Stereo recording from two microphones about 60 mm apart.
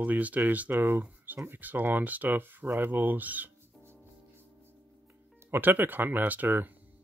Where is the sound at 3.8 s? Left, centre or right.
Right.